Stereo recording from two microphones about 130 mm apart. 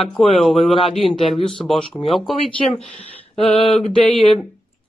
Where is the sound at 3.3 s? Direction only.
45° left (ahead or behind).